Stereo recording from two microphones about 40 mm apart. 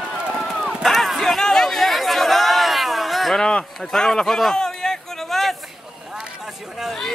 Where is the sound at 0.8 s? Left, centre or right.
Centre.